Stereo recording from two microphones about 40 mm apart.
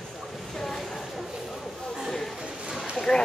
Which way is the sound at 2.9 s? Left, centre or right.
Centre.